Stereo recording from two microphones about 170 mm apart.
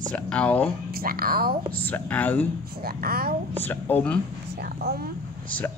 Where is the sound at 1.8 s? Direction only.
10° left (ahead or behind).